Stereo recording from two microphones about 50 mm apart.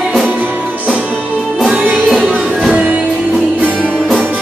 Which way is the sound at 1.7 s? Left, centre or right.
Right.